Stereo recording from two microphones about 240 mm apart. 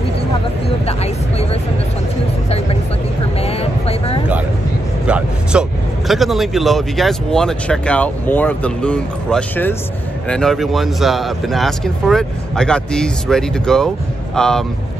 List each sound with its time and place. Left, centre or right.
0.8 s speech: left
3.3 s vehicle: left
5.0 s speech: centre